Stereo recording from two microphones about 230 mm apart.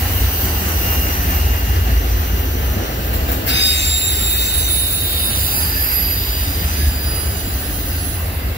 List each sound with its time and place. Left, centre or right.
3.4 s train: left